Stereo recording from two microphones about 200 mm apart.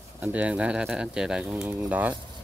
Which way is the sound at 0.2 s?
5° right (ahead or behind).